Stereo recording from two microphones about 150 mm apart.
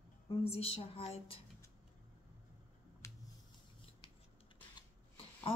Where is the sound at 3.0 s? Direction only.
20° left (ahead or behind).